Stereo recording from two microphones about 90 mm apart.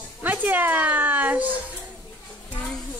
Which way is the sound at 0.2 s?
20° right (ahead or behind).